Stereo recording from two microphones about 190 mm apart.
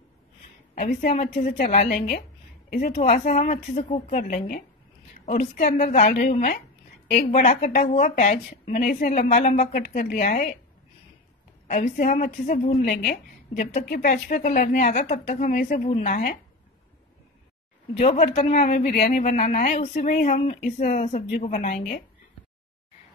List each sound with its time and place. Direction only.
0.7 s speech: 40° left (ahead or behind)
11.6 s a woman's voice: 40° left (ahead or behind)
17.9 s speech: 40° left (ahead or behind)